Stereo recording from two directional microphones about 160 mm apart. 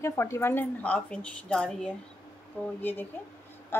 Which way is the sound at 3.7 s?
15° left (ahead or behind).